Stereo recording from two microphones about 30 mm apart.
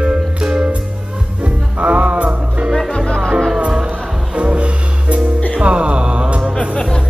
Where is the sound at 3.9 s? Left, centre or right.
Right.